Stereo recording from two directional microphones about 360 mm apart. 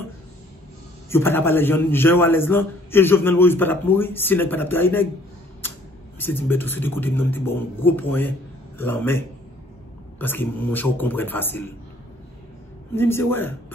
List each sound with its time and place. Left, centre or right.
1.1 s a man's voice: centre
6.1 s a man's voice: centre
12.9 s a man's voice: centre